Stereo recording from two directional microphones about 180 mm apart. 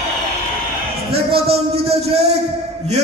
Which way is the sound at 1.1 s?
35° right (ahead or behind).